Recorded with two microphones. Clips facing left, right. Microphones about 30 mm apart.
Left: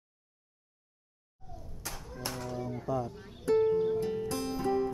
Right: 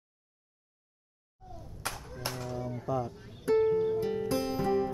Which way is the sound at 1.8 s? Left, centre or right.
Right.